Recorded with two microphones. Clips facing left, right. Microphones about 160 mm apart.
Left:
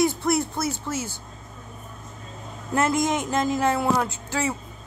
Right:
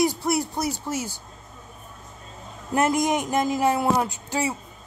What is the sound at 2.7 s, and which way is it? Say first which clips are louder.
Speech: right 1 dB; 15° right (ahead or behind).